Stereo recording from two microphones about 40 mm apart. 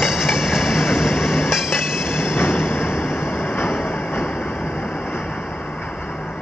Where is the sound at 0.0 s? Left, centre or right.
Centre.